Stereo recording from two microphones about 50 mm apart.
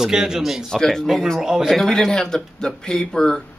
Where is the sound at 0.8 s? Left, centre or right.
Centre.